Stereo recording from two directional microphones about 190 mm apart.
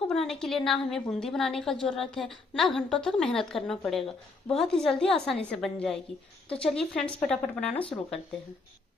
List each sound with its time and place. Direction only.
0.1 s a woman's voice: centre (ahead or behind)
4.0 s speech: 30° left (ahead or behind)
4.6 s a woman's voice: 5° left (ahead or behind)